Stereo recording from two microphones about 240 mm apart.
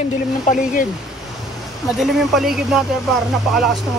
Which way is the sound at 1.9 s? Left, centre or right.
Centre.